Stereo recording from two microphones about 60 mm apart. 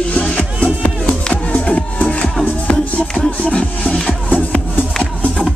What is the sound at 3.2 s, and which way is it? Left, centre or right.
Music, centre.